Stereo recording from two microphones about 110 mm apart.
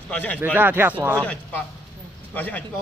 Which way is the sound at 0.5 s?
20° right (ahead or behind).